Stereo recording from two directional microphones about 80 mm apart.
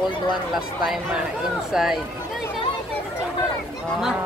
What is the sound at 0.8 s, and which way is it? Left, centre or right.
Speech, centre.